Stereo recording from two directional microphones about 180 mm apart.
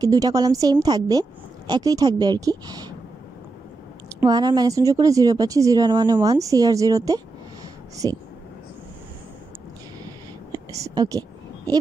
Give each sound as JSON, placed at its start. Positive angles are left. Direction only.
{"t": 0.0, "sound": "speech", "side_deg": -20}
{"t": 4.2, "sound": "speech", "side_deg": -20}
{"t": 10.5, "sound": "a sound", "side_deg": -20}